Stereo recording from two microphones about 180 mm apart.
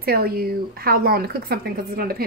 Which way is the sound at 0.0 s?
55° right (ahead or behind).